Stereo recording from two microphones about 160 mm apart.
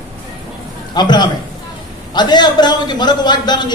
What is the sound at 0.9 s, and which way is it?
A man's voice, 25° left (ahead or behind).